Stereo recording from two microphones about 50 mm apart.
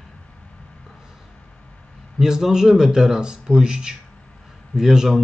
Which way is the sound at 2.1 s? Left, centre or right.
Centre.